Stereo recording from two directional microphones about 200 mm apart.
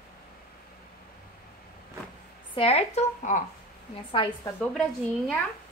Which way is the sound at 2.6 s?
30° left (ahead or behind).